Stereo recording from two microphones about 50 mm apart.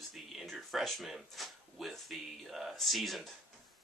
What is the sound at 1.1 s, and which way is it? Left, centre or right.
Speech, centre.